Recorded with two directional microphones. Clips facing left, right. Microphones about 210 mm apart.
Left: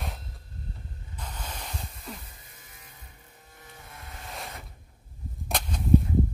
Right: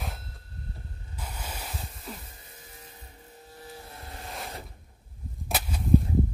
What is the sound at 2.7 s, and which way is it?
Music, 25° right (ahead or behind).